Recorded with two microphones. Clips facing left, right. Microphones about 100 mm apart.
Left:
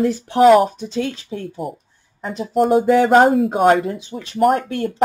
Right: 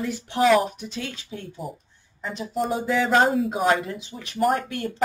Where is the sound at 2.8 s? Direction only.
50° left (ahead or behind).